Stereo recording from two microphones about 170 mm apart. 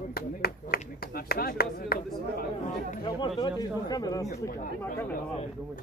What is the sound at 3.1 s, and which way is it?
Speech, 25° left (ahead or behind).